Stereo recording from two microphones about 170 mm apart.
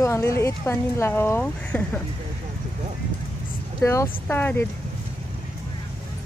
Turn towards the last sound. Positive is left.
turn(degrees=10)  # may be behind; listen again after turning